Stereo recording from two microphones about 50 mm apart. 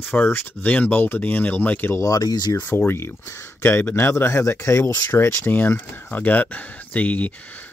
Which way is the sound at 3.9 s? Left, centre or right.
Left.